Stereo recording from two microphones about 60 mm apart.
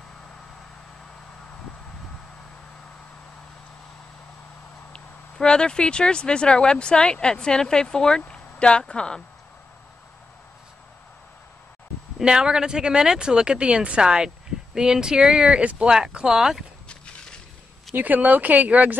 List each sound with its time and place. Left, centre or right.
4.9 s speech: centre
12.2 s speech: centre
16.9 s a sound: centre
17.9 s speech: right